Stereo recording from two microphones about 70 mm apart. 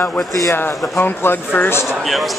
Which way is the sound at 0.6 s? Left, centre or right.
Left.